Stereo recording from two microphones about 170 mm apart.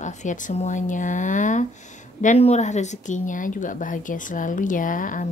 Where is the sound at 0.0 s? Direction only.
45° left (ahead or behind).